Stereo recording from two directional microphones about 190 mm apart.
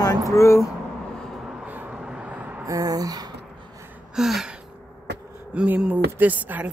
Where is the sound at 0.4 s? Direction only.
15° left (ahead or behind).